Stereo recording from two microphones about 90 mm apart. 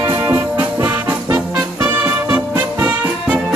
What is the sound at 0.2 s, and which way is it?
Music, 20° right (ahead or behind).